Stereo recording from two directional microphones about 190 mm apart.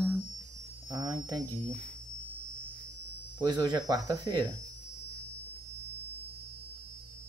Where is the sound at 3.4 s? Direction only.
20° right (ahead or behind).